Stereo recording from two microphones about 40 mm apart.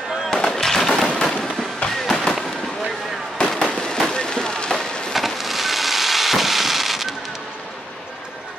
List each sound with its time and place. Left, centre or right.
0.3 s fireworks: centre
3.3 s fireworks: left
4.1 s a sound: centre
5.1 s fireworks: centre